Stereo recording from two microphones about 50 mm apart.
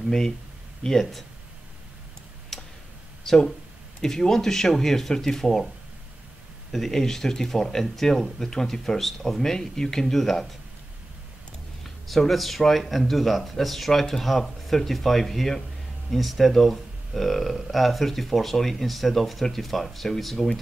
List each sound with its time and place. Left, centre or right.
0.8 s speech: centre
2.5 s tick: centre
3.3 s speech: centre
6.7 s speech: centre
12.1 s speech: centre